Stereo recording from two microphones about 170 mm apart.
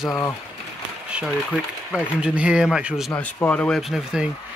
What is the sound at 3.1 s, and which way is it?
Speech, 10° left (ahead or behind).